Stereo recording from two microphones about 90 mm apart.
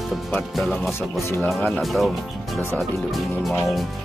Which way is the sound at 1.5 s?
15° left (ahead or behind).